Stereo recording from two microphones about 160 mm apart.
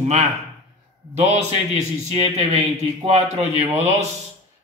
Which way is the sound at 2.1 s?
40° right (ahead or behind).